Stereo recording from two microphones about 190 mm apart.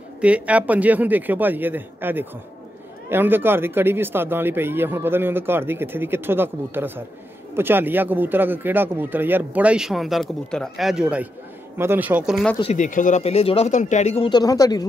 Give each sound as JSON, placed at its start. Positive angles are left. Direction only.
{"t": 0.2, "sound": "speech", "side_deg": -5}
{"t": 12.7, "sound": "speech", "side_deg": 40}